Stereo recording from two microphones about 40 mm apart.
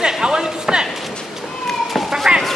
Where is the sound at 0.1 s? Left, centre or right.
Centre.